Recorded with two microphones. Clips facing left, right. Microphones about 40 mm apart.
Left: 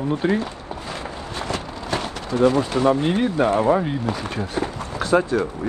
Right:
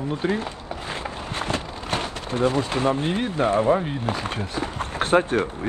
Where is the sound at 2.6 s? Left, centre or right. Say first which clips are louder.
Left 4 dB; right.